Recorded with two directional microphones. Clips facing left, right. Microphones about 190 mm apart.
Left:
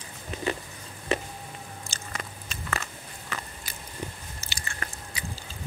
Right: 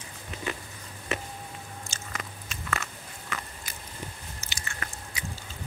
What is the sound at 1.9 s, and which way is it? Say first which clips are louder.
Biting: left 2 dB; 35° left (ahead or behind).